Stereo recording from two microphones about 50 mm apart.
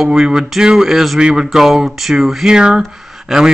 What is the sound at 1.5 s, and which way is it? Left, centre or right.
Speech, centre.